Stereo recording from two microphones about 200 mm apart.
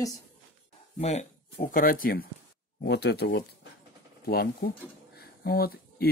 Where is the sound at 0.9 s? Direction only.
35° left (ahead or behind).